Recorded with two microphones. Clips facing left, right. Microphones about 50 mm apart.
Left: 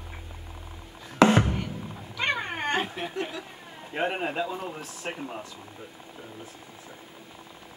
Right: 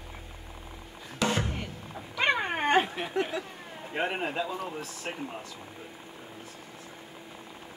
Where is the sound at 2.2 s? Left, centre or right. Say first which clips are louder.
Right 2 dB; centre.